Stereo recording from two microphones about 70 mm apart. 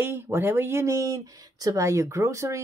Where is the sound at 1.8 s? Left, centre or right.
Right.